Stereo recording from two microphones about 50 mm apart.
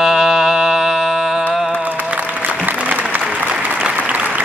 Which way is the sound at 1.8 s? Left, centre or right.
Right.